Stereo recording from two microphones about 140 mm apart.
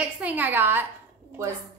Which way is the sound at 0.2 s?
10° right (ahead or behind).